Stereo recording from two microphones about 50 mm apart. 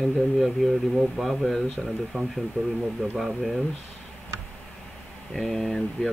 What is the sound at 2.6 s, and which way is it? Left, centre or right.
Speech, centre.